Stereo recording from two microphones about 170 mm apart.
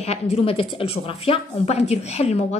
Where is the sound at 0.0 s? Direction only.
35° left (ahead or behind).